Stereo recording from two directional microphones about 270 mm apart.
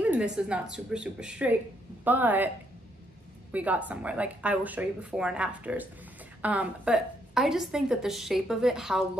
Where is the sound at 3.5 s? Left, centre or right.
Centre.